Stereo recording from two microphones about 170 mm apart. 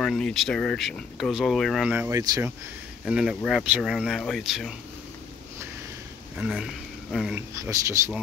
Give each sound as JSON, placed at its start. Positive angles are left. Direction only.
{"t": 0.0, "sound": "speech", "side_deg": 0}
{"t": 3.1, "sound": "speech", "side_deg": -5}
{"t": 6.3, "sound": "speech", "side_deg": -5}
{"t": 7.3, "sound": "speech", "side_deg": -15}